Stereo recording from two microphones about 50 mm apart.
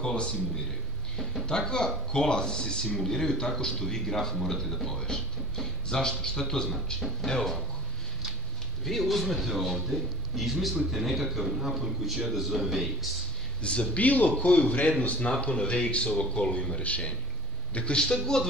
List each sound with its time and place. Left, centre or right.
0.0 s speech: left
1.5 s a man's voice: centre
8.8 s a man's voice: centre
13.6 s a man's voice: left